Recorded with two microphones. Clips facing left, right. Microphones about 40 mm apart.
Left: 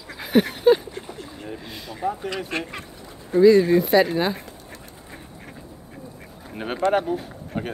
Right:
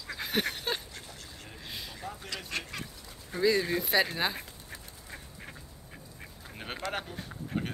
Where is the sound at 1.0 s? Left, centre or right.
Left.